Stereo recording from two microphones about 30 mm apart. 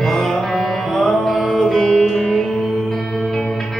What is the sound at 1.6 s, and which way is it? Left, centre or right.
Music, left.